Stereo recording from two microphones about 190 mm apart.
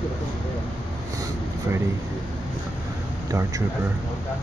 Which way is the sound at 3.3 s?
15° right (ahead or behind).